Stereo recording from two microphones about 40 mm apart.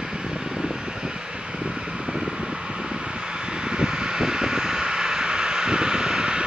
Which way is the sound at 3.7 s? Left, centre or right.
Centre.